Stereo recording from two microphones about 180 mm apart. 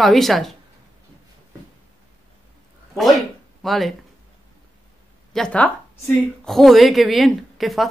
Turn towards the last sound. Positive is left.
turn(degrees=0)  # may be behind; listen again after turning